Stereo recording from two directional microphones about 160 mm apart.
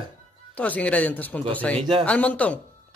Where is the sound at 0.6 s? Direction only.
10° left (ahead or behind).